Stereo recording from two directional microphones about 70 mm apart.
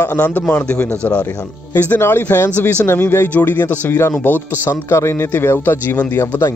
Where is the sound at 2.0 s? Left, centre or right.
Left.